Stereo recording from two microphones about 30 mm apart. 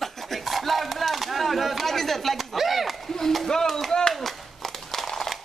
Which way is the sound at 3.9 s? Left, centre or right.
Left.